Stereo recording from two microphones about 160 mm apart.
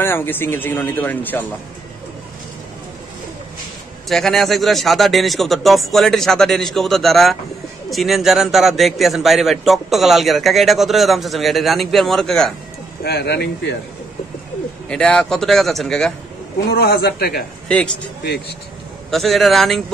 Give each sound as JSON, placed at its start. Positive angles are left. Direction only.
{"t": 0.0, "sound": "speech", "side_deg": 15}
{"t": 4.1, "sound": "a man's voice", "side_deg": 0}
{"t": 13.0, "sound": "speech", "side_deg": 90}
{"t": 14.9, "sound": "a man's voice", "side_deg": 5}
{"t": 16.7, "sound": "a man's voice", "side_deg": 75}
{"t": 17.6, "sound": "speech", "side_deg": 5}
{"t": 19.0, "sound": "a man's voice", "side_deg": 0}